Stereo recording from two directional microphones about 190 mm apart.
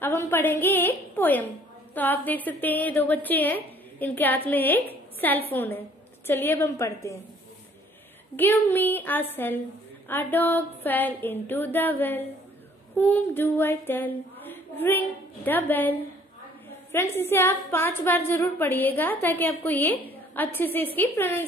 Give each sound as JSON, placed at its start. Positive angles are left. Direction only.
{"t": 0.0, "sound": "a woman's voice", "side_deg": 10}
{"t": 8.4, "sound": "a woman's voice", "side_deg": 10}